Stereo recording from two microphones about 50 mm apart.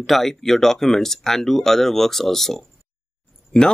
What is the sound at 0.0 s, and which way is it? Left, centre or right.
A man's voice, centre.